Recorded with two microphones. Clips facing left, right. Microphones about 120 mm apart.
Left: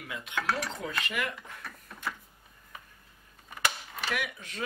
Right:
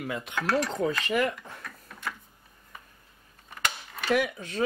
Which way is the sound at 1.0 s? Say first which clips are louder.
Right 8 dB; 35° right (ahead or behind).